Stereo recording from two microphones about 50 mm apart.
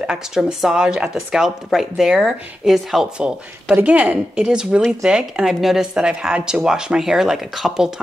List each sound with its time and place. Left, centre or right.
0.0 s a woman's voice: centre
3.8 s a woman's voice: right
4.5 s a woman's voice: centre
5.9 s a woman's voice: centre